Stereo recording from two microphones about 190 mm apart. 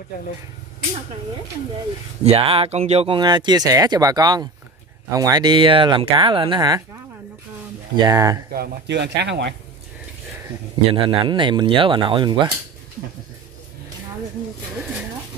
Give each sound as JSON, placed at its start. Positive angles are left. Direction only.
{"t": 2.2, "sound": "speech", "side_deg": -30}
{"t": 7.9, "sound": "speech", "side_deg": -20}
{"t": 8.5, "sound": "speech", "side_deg": -60}
{"t": 10.9, "sound": "speech", "side_deg": -25}